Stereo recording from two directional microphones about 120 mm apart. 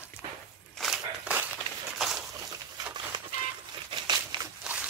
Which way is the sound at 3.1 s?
35° right (ahead or behind).